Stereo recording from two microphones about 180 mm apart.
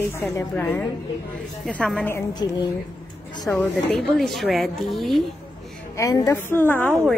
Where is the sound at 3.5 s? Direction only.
5° left (ahead or behind).